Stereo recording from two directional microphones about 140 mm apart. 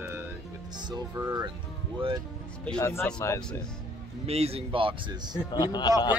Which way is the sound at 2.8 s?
20° left (ahead or behind).